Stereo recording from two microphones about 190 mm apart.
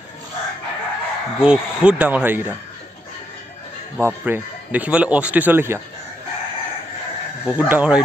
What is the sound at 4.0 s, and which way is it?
A man's voice, 10° right (ahead or behind).